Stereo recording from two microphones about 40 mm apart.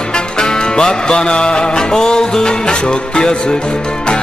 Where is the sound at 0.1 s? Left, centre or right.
Centre.